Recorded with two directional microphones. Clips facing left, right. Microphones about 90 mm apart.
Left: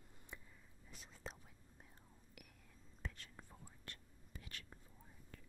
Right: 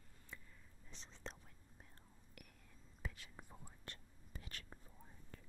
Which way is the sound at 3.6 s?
25° right (ahead or behind).